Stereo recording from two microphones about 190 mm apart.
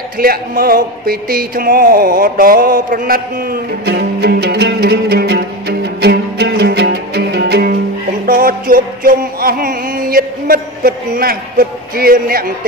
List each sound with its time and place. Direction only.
0.2 s music: 50° right (ahead or behind)
3.8 s music: 60° right (ahead or behind)